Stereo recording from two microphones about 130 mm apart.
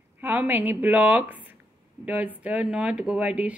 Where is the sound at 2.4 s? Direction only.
10° right (ahead or behind).